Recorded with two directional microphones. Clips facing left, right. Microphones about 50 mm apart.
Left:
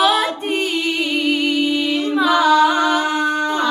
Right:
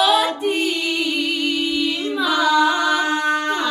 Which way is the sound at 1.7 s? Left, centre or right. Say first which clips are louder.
Left 3 dB; left.